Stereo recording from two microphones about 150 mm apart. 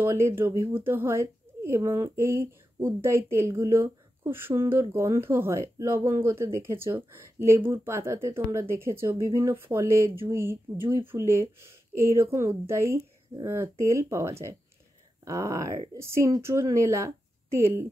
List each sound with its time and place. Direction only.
0.0 s a woman's voice: 20° right (ahead or behind)